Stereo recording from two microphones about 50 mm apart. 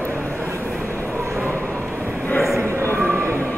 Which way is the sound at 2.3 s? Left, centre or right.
Centre.